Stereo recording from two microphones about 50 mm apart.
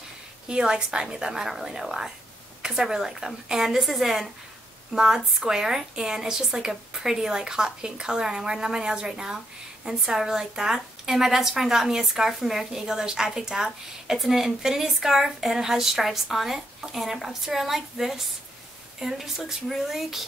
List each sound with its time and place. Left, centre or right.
0.5 s a woman's voice: centre